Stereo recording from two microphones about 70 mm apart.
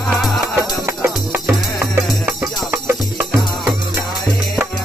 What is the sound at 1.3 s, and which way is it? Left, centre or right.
Music, right.